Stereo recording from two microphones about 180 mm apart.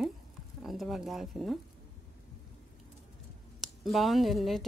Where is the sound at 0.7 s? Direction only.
Centre (ahead or behind).